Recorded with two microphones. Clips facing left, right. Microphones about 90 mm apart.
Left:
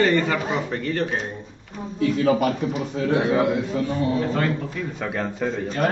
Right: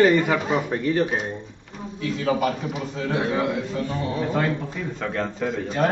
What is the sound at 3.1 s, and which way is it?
Speech, 30° left (ahead or behind).